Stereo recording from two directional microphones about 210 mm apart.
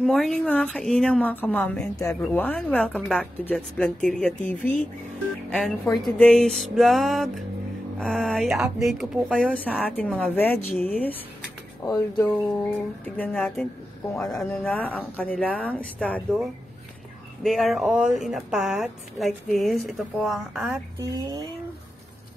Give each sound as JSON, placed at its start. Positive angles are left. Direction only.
{"t": 0.0, "sound": "a woman's voice", "side_deg": 0}
{"t": 6.0, "sound": "a woman's voice", "side_deg": 5}
{"t": 11.8, "sound": "speech", "side_deg": 20}
{"t": 13.0, "sound": "a woman's voice", "side_deg": 5}
{"t": 21.0, "sound": "a sound", "side_deg": -15}